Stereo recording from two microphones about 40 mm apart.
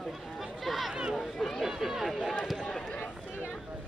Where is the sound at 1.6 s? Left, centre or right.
Centre.